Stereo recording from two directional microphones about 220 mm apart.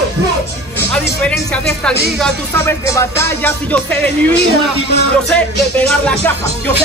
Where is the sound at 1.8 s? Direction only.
5° left (ahead or behind).